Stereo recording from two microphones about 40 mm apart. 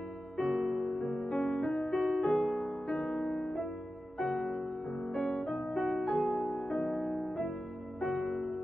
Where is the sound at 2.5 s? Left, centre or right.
Centre.